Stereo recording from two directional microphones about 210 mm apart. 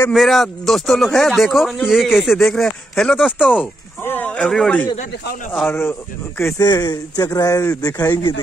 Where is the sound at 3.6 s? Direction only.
10° left (ahead or behind).